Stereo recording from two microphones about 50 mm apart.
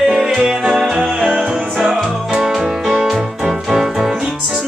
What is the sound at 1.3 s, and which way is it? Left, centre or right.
Music, right.